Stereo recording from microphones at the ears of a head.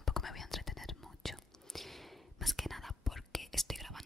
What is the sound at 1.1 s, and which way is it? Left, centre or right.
Whispering, centre.